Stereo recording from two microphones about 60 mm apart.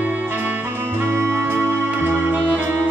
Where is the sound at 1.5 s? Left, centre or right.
Right.